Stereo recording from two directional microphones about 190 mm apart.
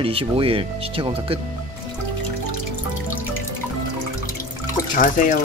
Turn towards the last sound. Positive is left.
turn(degrees=45)  # may be behind; listen again after turning